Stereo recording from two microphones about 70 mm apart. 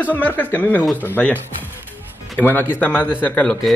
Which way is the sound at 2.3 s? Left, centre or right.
Left.